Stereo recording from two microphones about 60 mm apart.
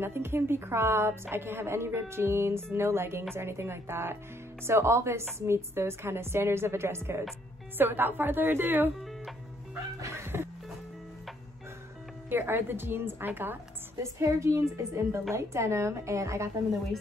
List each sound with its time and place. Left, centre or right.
0.0 s a woman's voice: right
10.2 s music: right
12.3 s a woman's voice: right
13.9 s a woman's voice: right